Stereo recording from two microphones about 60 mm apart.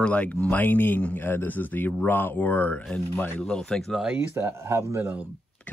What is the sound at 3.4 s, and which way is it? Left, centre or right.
Speech, centre.